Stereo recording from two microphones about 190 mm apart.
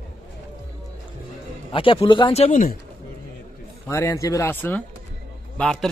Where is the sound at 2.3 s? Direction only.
40° left (ahead or behind).